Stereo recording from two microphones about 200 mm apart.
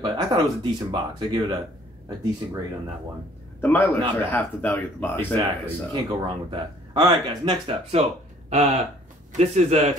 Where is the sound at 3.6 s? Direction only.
10° left (ahead or behind).